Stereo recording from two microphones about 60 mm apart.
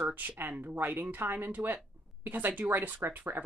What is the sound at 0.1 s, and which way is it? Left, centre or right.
Speech, right.